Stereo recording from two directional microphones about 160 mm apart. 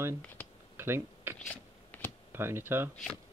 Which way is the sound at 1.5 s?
10° left (ahead or behind).